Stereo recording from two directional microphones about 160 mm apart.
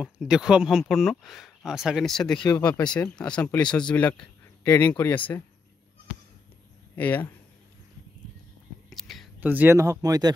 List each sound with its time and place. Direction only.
0.0 s speech: 5° right (ahead or behind)
7.0 s speech: 10° left (ahead or behind)
8.9 s whispering: centre (ahead or behind)
9.4 s speech: 10° right (ahead or behind)